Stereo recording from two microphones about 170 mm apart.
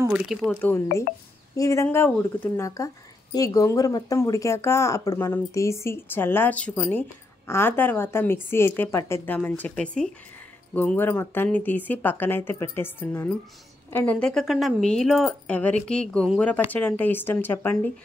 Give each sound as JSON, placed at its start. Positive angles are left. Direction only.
{"t": 0.1, "sound": "speech", "side_deg": -5}